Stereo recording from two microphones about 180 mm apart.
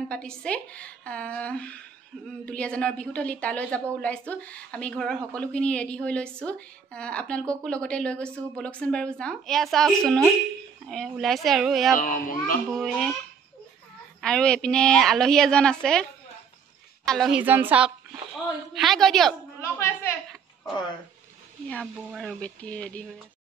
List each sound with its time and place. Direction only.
0.1 s a woman's voice: 5° left (ahead or behind)
12.0 s a child's voice: 50° left (ahead or behind)
12.7 s a woman's voice: centre (ahead or behind)
14.2 s a woman's voice: 5° left (ahead or behind)
19.6 s a woman's voice: 15° left (ahead or behind)
21.6 s a woman's voice: 5° left (ahead or behind)